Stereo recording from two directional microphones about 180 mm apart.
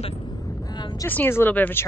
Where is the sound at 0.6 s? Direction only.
20° left (ahead or behind).